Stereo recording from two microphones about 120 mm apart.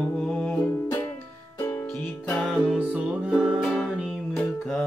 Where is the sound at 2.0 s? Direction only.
10° left (ahead or behind).